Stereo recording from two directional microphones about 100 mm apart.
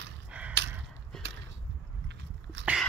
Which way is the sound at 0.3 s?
15° right (ahead or behind).